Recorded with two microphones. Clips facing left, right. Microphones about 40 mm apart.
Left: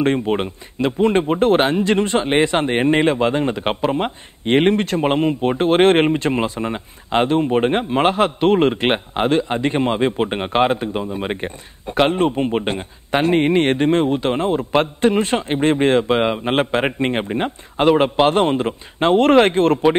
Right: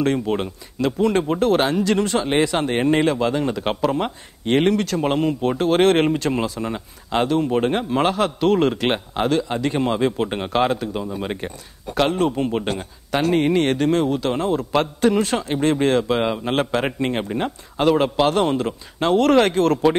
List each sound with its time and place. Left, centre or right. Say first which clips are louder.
0.0 s speech: left 2 dB; left